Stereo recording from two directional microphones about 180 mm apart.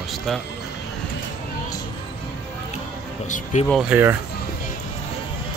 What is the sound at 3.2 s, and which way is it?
Speech, 45° left (ahead or behind).